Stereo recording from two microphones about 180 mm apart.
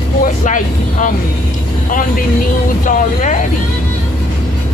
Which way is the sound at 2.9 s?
40° left (ahead or behind).